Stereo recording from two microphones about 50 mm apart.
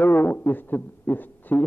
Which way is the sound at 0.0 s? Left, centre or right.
Left.